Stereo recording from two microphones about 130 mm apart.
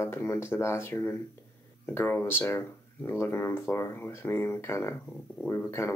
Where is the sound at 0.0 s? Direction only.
20° left (ahead or behind).